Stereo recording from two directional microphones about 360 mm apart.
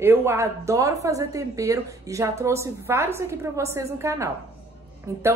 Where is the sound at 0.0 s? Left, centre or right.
Centre.